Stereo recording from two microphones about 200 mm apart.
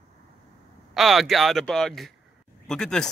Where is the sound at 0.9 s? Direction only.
Centre (ahead or behind).